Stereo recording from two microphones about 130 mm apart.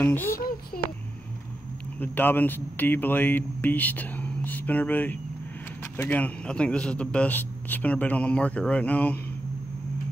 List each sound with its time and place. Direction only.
0.0 s a child's voice: 15° left (ahead or behind)
2.0 s a man's voice: 15° left (ahead or behind)